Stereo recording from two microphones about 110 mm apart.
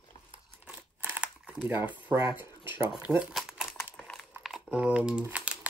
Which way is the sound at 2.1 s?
30° right (ahead or behind).